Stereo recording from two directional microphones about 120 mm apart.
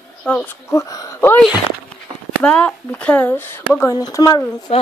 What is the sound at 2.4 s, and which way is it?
Speech, 10° left (ahead or behind).